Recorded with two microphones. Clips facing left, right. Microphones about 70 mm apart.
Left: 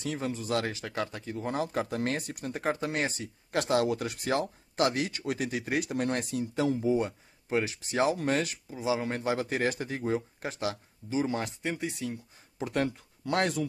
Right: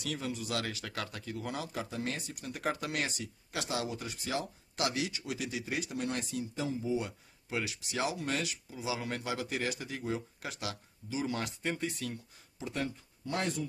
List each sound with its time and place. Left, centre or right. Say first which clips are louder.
0.0 s speech: left 4 dB; left
2.5 s speech: left 4 dB; left
3.6 s speech: left 10 dB; left
7.0 s speech: left 7 dB; left
11.6 s speech: left 2 dB; centre
12.5 s speech: left 7 dB; left